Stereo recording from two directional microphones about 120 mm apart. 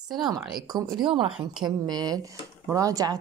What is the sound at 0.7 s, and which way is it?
Speech, 35° right (ahead or behind).